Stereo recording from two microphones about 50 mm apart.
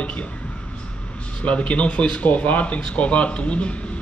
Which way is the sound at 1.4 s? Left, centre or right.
Left.